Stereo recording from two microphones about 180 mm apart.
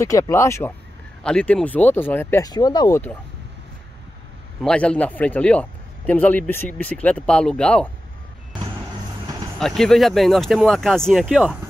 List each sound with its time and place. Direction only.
0.0 s a man's voice: 15° left (ahead or behind)
4.6 s a man's voice: 5° left (ahead or behind)
9.6 s speech: centre (ahead or behind)